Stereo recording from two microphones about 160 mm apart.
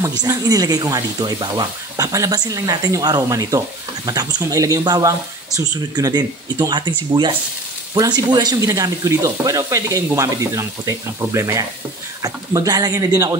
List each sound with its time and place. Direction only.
0.0 s speech: 25° right (ahead or behind)